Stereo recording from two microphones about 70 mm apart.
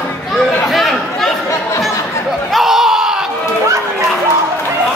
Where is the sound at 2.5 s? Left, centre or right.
Centre.